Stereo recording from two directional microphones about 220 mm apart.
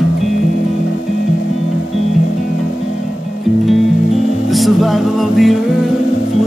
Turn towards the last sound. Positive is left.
turn(degrees=0)  # may be behind; listen again after turning